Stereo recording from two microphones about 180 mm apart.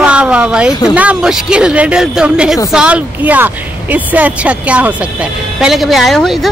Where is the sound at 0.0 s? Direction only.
5° right (ahead or behind).